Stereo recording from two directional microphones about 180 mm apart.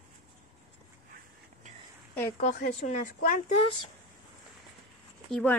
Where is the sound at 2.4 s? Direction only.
45° left (ahead or behind).